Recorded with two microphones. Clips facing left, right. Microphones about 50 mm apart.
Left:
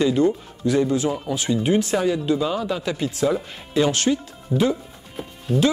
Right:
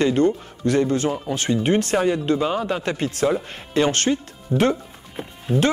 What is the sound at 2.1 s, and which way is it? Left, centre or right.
Speech, right.